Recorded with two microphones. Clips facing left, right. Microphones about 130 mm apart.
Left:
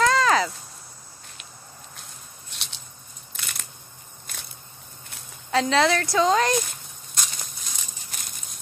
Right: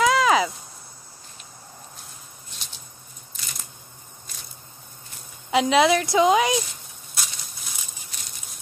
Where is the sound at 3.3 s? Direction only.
65° left (ahead or behind).